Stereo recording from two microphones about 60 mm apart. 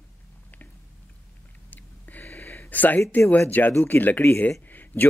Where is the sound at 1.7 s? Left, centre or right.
Left.